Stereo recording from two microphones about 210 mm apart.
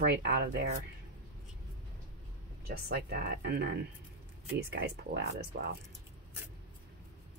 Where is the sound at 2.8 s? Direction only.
50° right (ahead or behind).